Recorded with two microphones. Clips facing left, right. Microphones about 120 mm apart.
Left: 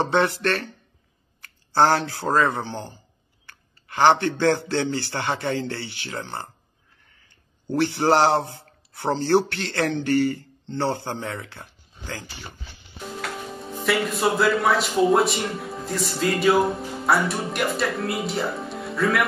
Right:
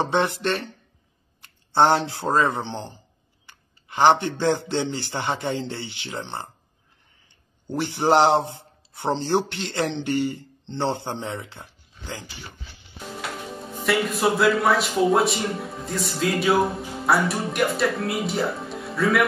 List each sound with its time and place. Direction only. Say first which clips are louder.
0.0 s speech: left 1 dB; 15° right (ahead or behind)
3.4 s a sound: left 1 dB; 15° right (ahead or behind)
4.4 s a man's voice: left 1 dB; 15° right (ahead or behind)
7.7 s a man's voice: even; 15° right (ahead or behind)
13.8 s a man's voice: right 1 dB; centre (ahead or behind)